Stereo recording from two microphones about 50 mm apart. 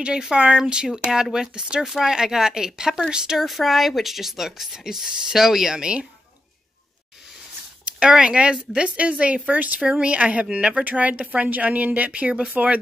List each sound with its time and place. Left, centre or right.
0.0 s speech: centre
3.4 s speech: centre
8.0 s a woman's voice: centre